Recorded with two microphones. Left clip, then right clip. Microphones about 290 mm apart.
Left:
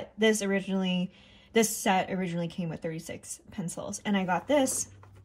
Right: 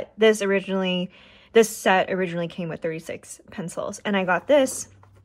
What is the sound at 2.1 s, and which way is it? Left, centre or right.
A woman's voice, centre.